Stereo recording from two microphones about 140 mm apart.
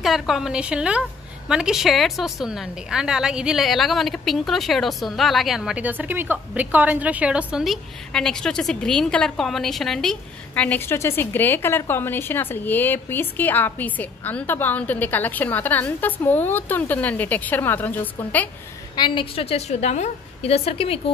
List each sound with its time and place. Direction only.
0.0 s a woman's voice: centre (ahead or behind)
18.9 s a woman's voice: 35° left (ahead or behind)